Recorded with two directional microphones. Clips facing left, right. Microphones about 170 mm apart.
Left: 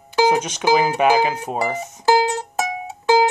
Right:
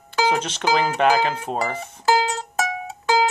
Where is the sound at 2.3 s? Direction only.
20° left (ahead or behind).